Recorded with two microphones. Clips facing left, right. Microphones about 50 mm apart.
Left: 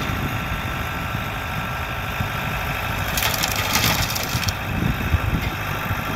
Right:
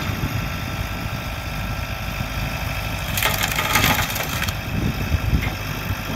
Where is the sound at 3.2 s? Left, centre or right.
Centre.